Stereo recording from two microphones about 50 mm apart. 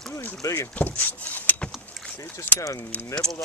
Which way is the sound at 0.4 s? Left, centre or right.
Left.